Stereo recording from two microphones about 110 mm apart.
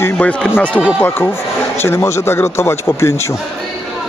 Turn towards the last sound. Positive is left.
turn(degrees=25)  # may be behind; listen again after turning